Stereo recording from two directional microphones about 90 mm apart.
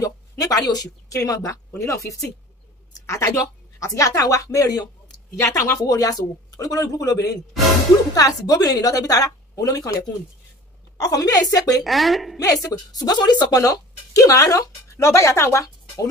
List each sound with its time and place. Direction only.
0.0 s a woman's voice: 40° left (ahead or behind)
11.8 s speech: centre (ahead or behind)
12.4 s a woman's voice: 40° left (ahead or behind)
13.6 s speech: 40° left (ahead or behind)